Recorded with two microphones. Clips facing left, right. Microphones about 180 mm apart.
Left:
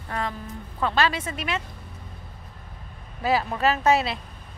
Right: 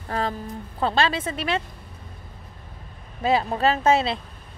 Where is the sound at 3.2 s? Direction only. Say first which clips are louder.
Right 2 dB; 25° right (ahead or behind).